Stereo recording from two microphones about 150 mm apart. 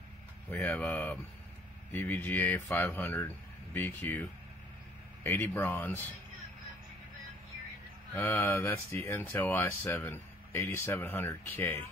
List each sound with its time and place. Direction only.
0.5 s speech: 10° left (ahead or behind)
8.1 s speech: 15° left (ahead or behind)